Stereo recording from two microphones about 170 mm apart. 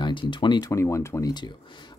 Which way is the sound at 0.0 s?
30° left (ahead or behind).